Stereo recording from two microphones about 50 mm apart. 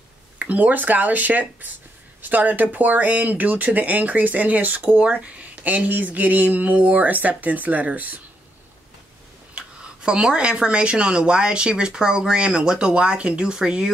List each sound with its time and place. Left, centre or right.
0.4 s speech: right
9.6 s speech: centre